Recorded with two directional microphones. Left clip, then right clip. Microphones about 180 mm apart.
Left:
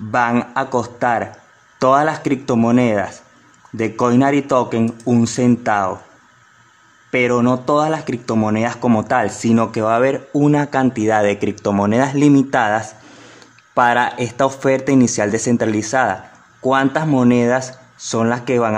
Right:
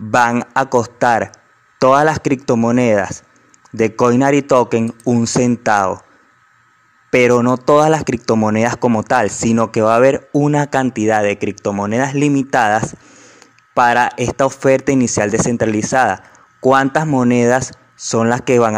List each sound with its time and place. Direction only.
0.5 s speech: 30° right (ahead or behind)
7.1 s speech: 35° right (ahead or behind)